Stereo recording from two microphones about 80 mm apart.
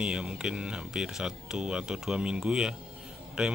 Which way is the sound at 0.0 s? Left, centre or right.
Centre.